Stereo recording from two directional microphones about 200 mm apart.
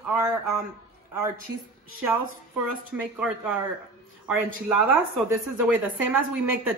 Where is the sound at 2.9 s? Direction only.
5° right (ahead or behind).